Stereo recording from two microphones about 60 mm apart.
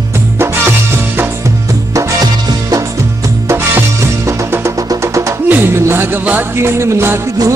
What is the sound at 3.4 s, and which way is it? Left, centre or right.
Music, right.